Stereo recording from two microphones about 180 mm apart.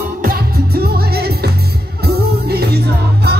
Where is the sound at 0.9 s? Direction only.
60° right (ahead or behind).